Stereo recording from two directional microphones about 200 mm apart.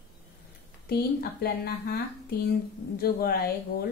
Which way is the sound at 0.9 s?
50° left (ahead or behind).